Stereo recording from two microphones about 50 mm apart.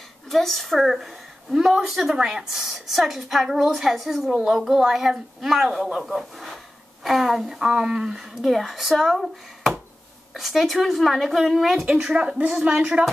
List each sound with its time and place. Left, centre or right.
0.3 s a woman's voice: centre
8.5 s a woman's voice: centre
11.9 s speech: centre